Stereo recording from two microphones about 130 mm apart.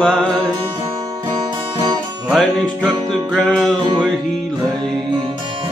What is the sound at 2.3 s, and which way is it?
Music, 5° left (ahead or behind).